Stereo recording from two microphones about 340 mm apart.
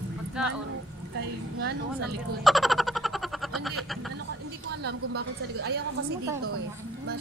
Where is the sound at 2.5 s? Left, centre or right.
Centre.